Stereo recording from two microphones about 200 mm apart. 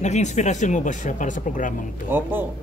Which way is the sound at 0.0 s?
35° left (ahead or behind).